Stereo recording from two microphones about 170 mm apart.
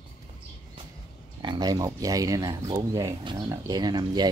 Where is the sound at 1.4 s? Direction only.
25° right (ahead or behind).